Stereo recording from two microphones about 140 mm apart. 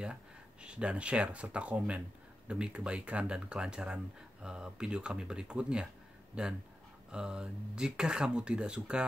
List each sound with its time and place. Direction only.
0.0 s speech: 5° right (ahead or behind)